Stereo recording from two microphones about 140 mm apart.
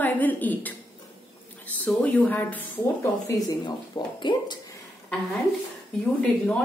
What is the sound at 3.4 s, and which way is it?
Speech, 30° left (ahead or behind).